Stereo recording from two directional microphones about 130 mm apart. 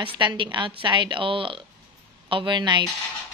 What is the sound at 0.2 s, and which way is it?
A woman's voice, 40° right (ahead or behind).